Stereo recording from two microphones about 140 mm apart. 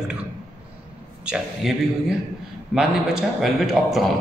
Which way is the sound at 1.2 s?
5° right (ahead or behind).